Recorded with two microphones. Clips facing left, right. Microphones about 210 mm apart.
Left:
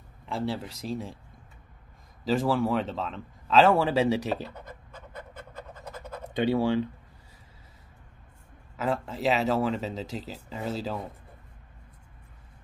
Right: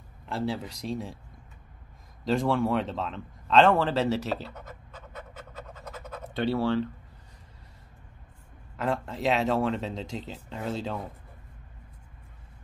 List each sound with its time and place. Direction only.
0.3 s a man's voice: centre (ahead or behind)
2.2 s a man's voice: centre (ahead or behind)
5.9 s scratch: 10° left (ahead or behind)
8.7 s a man's voice: centre (ahead or behind)